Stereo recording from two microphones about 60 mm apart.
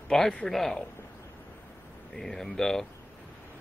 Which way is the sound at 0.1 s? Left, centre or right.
Centre.